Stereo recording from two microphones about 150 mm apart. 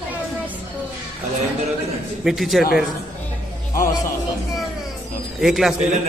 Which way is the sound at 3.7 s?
20° left (ahead or behind).